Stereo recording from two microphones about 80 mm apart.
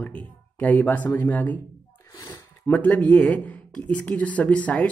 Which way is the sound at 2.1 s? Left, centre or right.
Left.